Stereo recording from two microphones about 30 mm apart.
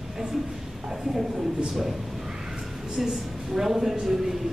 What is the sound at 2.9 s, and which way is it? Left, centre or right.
A woman's voice, centre.